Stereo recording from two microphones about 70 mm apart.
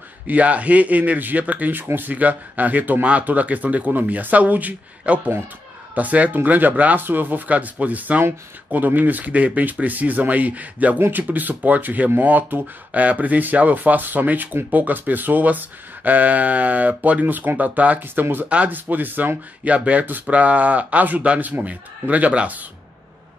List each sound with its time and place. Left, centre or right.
0.3 s speech: right